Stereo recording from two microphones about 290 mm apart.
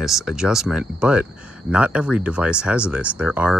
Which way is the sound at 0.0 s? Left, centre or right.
Centre.